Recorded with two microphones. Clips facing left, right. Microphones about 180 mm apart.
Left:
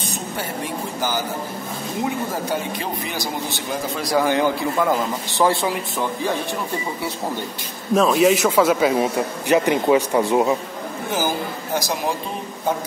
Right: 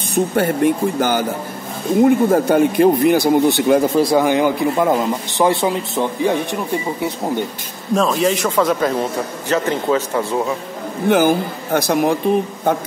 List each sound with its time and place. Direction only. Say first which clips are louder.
0.1 s speech: right 15 dB; 55° right (ahead or behind)
4.0 s a man's voice: right 5 dB; 20° right (ahead or behind)
7.9 s a man's voice: left 1 dB; centre (ahead or behind)
11.1 s speech: right 10 dB; 60° right (ahead or behind)